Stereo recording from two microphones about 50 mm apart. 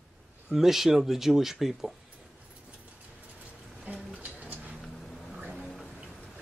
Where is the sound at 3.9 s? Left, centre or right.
Right.